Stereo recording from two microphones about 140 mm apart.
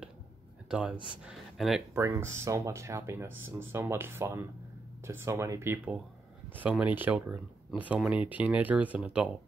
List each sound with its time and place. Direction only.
0.7 s speech: 5° right (ahead or behind)
2.0 s speech: 20° right (ahead or behind)